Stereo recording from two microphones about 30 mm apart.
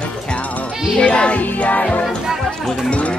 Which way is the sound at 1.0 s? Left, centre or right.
Left.